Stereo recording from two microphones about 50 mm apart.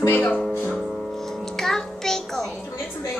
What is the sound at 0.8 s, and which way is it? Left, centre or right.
Music, centre.